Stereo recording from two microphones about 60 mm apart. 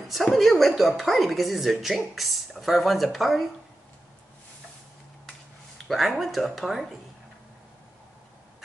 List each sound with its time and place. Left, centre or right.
0.1 s speech: centre
5.9 s speech: centre